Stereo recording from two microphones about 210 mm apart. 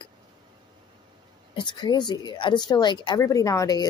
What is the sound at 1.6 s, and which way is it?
Speech, 20° left (ahead or behind).